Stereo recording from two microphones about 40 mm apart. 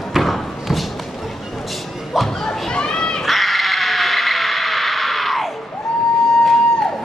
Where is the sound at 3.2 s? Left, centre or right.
Centre.